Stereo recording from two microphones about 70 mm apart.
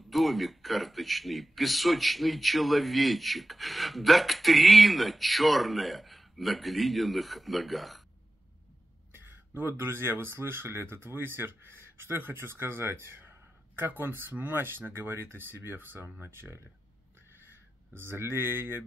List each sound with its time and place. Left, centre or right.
0.1 s a man's voice: centre
9.6 s speech: right